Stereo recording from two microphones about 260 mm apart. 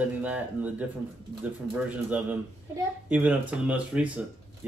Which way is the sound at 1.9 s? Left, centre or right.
Centre.